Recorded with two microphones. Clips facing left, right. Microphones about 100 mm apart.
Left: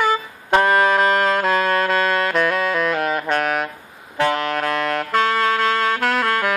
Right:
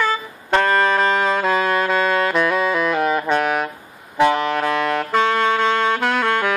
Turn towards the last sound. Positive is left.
turn(degrees=0)  # may be behind; listen again after turning